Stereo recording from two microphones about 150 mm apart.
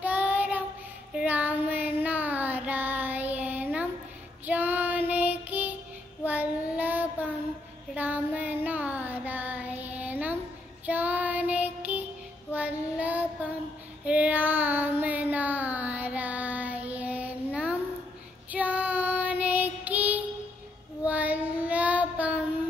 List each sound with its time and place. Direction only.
0.0 s child singing: 10° right (ahead or behind)